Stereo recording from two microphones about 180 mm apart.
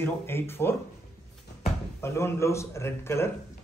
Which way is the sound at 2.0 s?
15° left (ahead or behind).